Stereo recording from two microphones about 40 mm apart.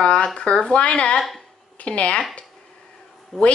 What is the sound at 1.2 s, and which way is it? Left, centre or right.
Speech, centre.